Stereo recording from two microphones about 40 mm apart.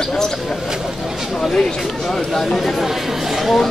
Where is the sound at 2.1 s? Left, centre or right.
Centre.